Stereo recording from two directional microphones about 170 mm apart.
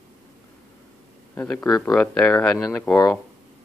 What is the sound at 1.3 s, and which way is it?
Speech, 10° left (ahead or behind).